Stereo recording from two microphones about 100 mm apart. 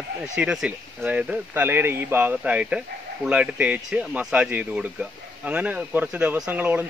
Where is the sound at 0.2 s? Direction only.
5° right (ahead or behind).